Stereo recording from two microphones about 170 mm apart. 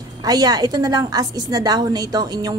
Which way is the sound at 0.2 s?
20° right (ahead or behind).